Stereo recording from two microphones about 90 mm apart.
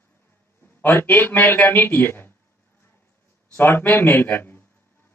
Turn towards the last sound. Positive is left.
turn(degrees=25)  # may be behind; listen again after turning